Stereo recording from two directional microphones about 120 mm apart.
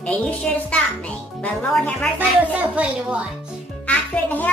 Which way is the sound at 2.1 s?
10° right (ahead or behind).